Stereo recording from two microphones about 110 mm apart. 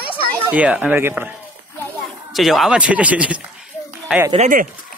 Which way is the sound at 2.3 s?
Centre (ahead or behind).